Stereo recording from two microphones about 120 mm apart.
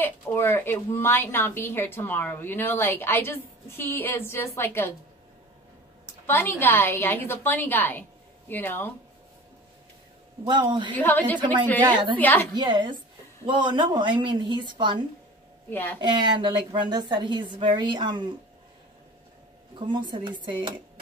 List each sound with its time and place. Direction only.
0.0 s a woman's voice: 20° left (ahead or behind)
6.2 s a woman's voice: 20° left (ahead or behind)
10.4 s a woman's voice: 40° right (ahead or behind)
11.0 s a woman's voice: 15° left (ahead or behind)
12.5 s a woman's voice: 35° right (ahead or behind)
15.7 s a woman's voice: 15° left (ahead or behind)
16.0 s a woman's voice: 40° right (ahead or behind)
19.9 s a woman's voice: 40° right (ahead or behind)